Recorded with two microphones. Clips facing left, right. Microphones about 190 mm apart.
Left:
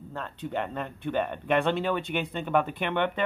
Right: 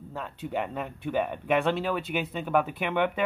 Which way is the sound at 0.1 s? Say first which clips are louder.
Even; 5° right (ahead or behind).